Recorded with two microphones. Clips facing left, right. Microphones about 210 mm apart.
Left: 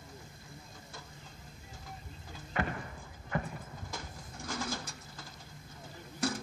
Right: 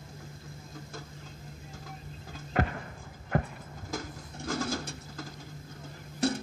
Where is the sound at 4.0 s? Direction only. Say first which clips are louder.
Right 5 dB; 45° right (ahead or behind).